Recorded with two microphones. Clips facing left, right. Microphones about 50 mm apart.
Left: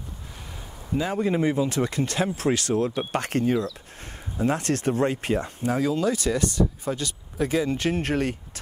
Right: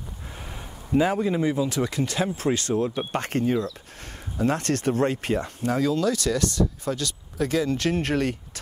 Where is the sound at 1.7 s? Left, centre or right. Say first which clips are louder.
Even; left.